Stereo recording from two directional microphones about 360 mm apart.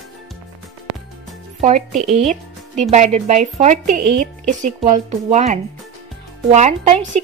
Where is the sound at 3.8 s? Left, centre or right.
Right.